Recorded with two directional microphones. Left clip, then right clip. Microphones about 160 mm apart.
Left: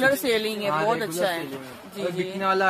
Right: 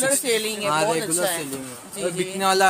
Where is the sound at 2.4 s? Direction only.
90° right.